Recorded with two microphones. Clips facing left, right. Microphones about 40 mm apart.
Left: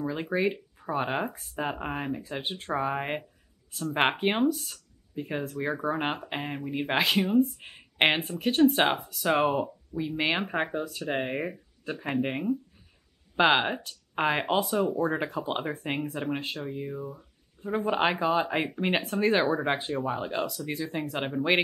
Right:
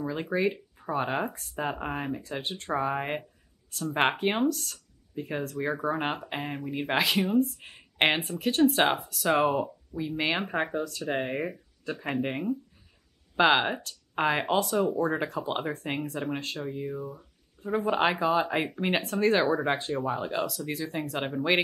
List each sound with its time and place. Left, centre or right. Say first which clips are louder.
0.0 s speech: even; centre
11.9 s speech: even; centre
12.2 s speech: left 3 dB; centre